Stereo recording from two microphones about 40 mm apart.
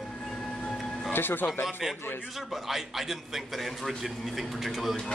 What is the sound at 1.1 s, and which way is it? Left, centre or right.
Speech, left.